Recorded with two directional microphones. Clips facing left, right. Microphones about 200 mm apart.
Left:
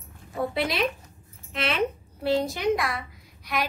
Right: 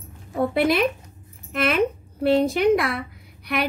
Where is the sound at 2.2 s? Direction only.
60° right (ahead or behind).